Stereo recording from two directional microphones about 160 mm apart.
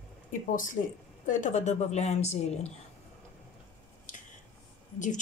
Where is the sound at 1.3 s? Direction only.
50° left (ahead or behind).